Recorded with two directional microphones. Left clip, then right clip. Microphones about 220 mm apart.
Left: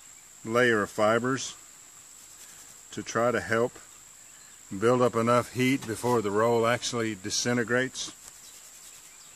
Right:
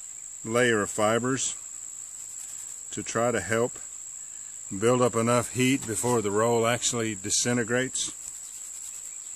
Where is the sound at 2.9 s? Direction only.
25° right (ahead or behind).